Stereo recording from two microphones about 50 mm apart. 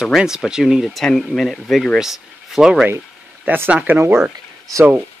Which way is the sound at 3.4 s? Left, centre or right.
Right.